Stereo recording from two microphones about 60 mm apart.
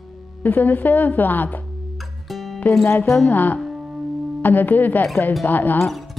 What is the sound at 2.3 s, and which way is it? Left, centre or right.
Music, centre.